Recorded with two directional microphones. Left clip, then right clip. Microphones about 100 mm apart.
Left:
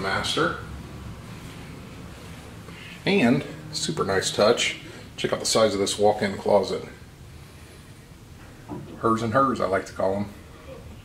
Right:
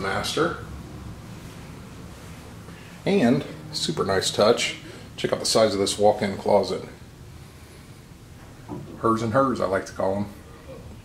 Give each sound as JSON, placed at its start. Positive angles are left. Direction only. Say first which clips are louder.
{"t": 0.0, "sound": "speech", "louder": "left 1 dB", "side_deg": 0}
{"t": 3.0, "sound": "speech", "louder": "even", "side_deg": 10}
{"t": 3.7, "sound": "speech", "louder": "right 1 dB", "side_deg": -10}
{"t": 8.7, "sound": "a sound", "louder": "even", "side_deg": -20}
{"t": 9.0, "sound": "speech", "louder": "even", "side_deg": -5}